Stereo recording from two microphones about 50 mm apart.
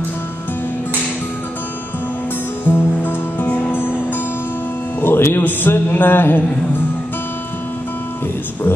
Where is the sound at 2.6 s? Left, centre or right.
Left.